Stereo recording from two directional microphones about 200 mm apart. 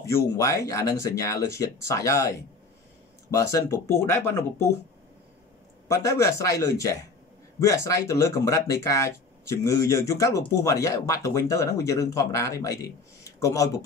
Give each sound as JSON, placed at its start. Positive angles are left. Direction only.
{"t": 0.1, "sound": "speech", "side_deg": 15}
{"t": 5.9, "sound": "speech", "side_deg": 15}